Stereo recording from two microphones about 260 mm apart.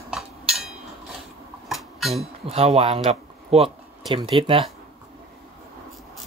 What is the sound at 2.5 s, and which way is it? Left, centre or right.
Speech, right.